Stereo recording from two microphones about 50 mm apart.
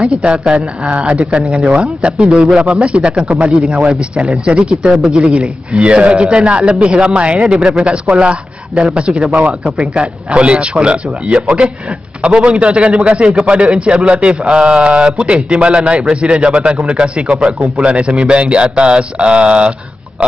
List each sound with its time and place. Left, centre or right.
0.0 s a man's voice: right